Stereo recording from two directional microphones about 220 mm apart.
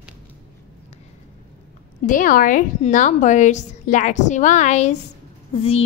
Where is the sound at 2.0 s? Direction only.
40° left (ahead or behind).